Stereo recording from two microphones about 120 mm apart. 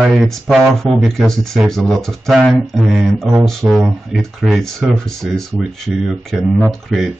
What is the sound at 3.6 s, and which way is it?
Speech, 25° right (ahead or behind).